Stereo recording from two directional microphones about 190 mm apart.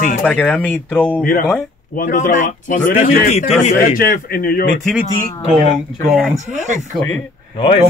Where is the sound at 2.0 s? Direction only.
45° left (ahead or behind).